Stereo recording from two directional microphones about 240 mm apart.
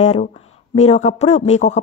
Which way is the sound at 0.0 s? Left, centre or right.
Left.